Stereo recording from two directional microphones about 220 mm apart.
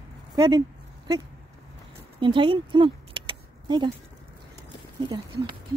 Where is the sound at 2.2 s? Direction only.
20° right (ahead or behind).